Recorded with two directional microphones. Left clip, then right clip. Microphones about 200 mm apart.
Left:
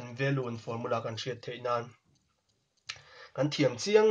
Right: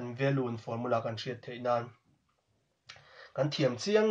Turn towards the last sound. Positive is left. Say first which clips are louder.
# left 3 dB
turn(degrees=35)  # may be behind; listen again after turning